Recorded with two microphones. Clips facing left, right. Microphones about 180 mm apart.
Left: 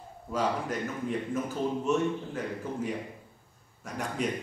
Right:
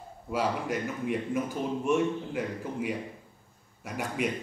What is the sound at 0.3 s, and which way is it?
A man's voice, 10° right (ahead or behind).